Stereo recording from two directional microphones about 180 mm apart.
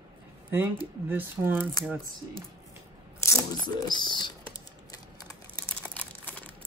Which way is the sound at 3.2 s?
20° left (ahead or behind).